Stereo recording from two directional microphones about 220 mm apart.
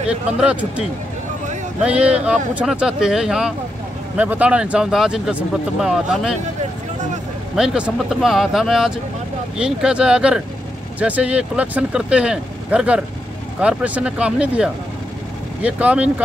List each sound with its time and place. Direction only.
0.1 s speech: 5° right (ahead or behind)
7.5 s speech: 5° right (ahead or behind)